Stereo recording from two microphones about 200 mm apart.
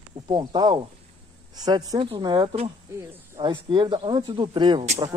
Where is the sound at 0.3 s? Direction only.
20° right (ahead or behind).